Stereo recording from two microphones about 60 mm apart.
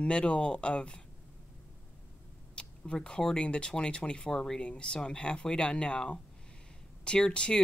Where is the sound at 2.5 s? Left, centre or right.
Centre.